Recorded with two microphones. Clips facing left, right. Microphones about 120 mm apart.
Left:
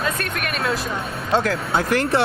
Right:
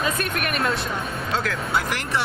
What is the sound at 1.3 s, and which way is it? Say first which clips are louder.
Speech: left 6 dB; 30° left (ahead or behind).